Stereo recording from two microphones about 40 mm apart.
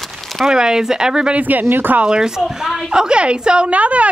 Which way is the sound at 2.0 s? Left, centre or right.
Centre.